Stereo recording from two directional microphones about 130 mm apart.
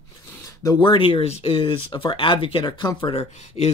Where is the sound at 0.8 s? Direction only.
40° left (ahead or behind).